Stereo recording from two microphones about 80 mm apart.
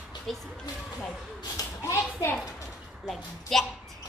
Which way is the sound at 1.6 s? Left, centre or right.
Left.